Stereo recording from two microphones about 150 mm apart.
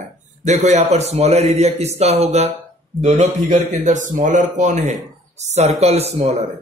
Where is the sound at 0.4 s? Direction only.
50° right (ahead or behind).